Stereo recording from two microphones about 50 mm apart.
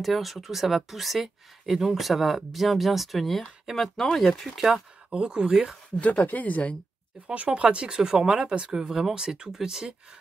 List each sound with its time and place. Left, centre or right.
0.0 s speech: centre
5.1 s speech: centre
5.9 s speech: left
7.3 s speech: right